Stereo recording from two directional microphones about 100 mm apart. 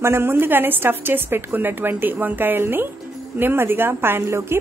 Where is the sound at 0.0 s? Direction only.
25° right (ahead or behind).